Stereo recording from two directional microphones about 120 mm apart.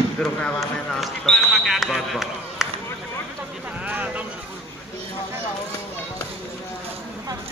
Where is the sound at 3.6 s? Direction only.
10° right (ahead or behind).